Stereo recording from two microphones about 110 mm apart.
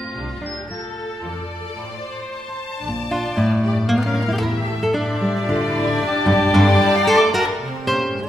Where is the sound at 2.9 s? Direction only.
Centre (ahead or behind).